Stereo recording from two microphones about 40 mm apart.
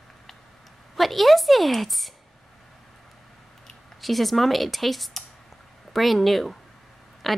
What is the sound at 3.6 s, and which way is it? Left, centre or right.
A woman's voice, centre.